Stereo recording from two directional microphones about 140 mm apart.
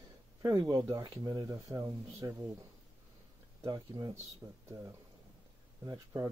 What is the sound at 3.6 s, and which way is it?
Speech, 25° right (ahead or behind).